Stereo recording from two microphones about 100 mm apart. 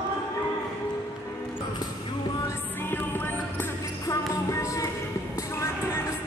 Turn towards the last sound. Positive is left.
turn(degrees=30)  # may be behind; listen again after turning